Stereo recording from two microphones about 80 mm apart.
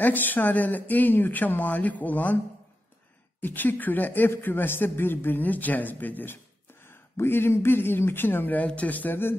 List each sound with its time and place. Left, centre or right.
0.0 s a man's voice: left
3.3 s a man's voice: left